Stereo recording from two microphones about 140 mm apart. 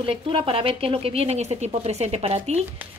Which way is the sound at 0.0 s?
40° right (ahead or behind).